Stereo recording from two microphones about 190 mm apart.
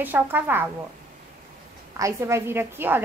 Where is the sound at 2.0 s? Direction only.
15° right (ahead or behind).